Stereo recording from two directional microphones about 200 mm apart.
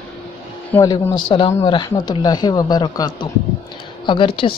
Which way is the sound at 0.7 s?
15° left (ahead or behind).